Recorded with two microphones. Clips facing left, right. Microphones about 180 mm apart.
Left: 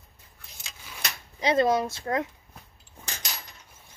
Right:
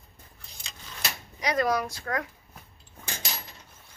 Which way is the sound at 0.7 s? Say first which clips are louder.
Even; 10° left (ahead or behind).